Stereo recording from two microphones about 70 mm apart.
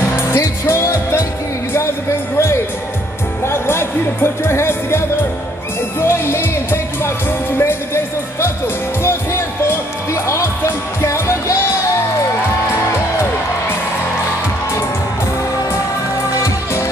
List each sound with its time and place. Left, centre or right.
0.1 s music: left
2.3 s speech: left
5.9 s music: left
10.2 s music: left